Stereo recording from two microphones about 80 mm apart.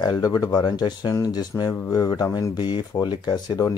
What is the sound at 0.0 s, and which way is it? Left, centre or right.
Speech, left.